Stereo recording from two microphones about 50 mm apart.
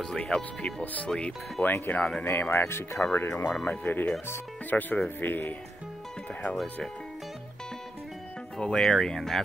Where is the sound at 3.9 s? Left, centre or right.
Left.